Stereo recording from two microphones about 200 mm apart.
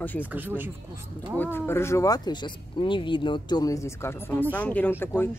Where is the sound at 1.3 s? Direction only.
10° left (ahead or behind).